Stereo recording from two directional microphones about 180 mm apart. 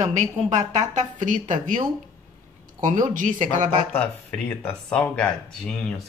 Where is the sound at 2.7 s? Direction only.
45° right (ahead or behind).